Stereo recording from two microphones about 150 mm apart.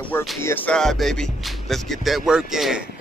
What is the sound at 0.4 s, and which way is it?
Speech, 15° left (ahead or behind).